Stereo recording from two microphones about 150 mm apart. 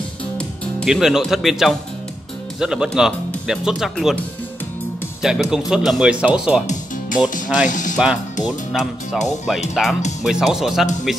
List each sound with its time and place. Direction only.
0.8 s speech: 5° right (ahead or behind)
5.2 s speech: 5° right (ahead or behind)
7.6 s speech: 60° left (ahead or behind)
8.5 s speech: centre (ahead or behind)